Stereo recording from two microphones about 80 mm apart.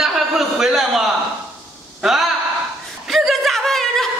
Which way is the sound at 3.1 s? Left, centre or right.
Centre.